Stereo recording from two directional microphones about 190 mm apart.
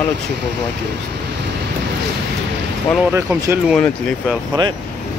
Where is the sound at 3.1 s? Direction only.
10° right (ahead or behind).